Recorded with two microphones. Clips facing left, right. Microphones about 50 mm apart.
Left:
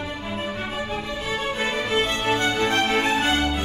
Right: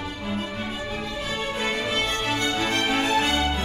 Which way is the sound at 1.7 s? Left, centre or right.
Left.